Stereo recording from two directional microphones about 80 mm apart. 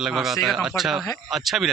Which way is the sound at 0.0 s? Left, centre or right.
Centre.